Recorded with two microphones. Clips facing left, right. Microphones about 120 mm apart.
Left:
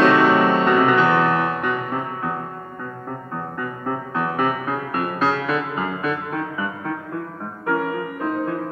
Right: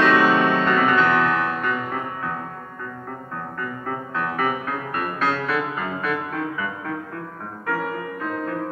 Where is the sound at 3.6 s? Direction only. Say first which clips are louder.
Left 3 dB; 15° left (ahead or behind).